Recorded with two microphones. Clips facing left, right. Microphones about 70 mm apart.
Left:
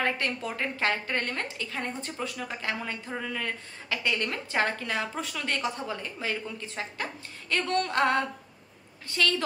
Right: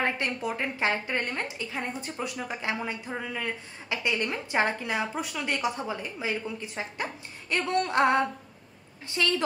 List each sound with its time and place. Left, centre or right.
0.0 s a woman's voice: centre